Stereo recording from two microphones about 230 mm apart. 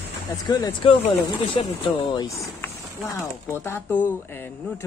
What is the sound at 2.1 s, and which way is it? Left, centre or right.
Speech, centre.